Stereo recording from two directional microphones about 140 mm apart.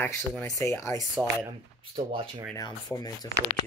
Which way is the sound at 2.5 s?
25° left (ahead or behind).